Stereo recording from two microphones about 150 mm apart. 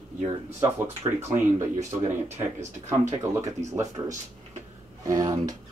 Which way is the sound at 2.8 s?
20° right (ahead or behind).